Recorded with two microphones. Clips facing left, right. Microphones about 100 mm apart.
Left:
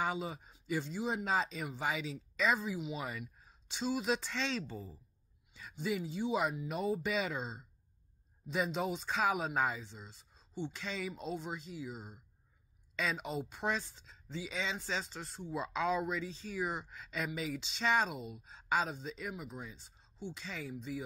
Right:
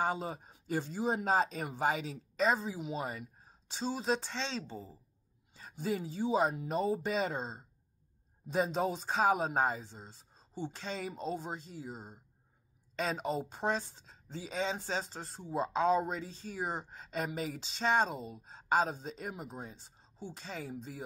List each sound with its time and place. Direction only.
0.0 s speech: 40° right (ahead or behind)
5.5 s speech: 40° right (ahead or behind)